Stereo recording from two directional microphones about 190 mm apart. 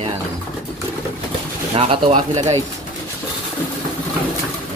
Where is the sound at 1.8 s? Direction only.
30° right (ahead or behind).